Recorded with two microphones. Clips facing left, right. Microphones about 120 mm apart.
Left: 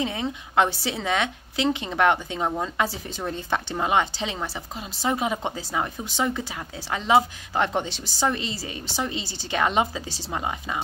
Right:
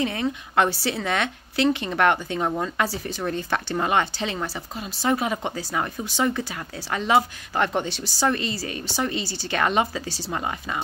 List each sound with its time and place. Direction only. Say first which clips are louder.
0.0 s a woman's voice: right 2 dB; 20° left (ahead or behind)